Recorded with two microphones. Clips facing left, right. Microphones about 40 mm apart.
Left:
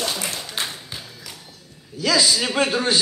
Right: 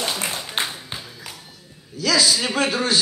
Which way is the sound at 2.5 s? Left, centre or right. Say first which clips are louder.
Left 1 dB; left.